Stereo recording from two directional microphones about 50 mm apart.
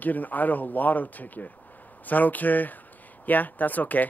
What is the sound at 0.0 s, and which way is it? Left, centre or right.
Speech, left.